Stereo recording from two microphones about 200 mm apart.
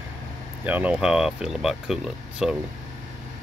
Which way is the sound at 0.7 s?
5° right (ahead or behind).